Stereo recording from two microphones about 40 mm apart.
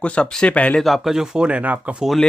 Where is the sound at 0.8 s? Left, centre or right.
Centre.